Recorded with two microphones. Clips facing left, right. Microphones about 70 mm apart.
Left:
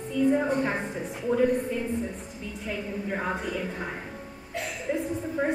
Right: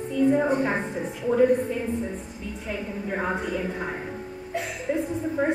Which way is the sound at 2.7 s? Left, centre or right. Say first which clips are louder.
Right 1 dB; centre.